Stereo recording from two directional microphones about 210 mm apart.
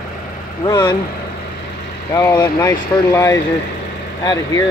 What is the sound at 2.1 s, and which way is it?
Speech, 15° left (ahead or behind).